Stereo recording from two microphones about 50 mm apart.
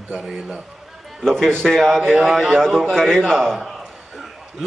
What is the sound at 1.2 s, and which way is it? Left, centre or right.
Speech, centre.